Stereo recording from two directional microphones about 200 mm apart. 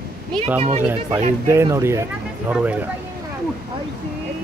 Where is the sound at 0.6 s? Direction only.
35° right (ahead or behind).